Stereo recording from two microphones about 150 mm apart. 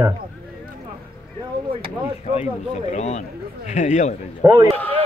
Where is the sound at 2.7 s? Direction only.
50° left (ahead or behind).